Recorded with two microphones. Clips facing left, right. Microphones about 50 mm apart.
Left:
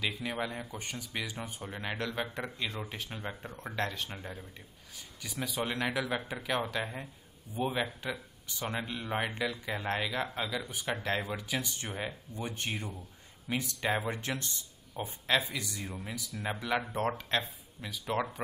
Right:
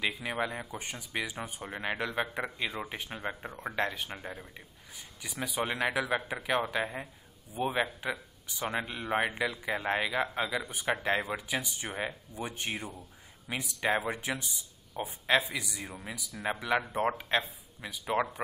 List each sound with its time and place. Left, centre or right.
0.0 s speech: centre